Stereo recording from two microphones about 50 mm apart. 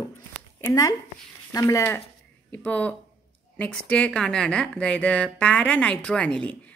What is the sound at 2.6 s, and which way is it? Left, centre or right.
A woman's voice, left.